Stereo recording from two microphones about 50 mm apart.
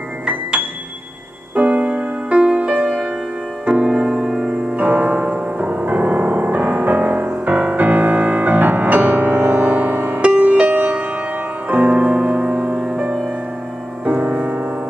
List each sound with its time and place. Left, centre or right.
0.3 s music: right; by 4.6 s centre
4.7 s music: right
10.2 s music: right
14.0 s music: right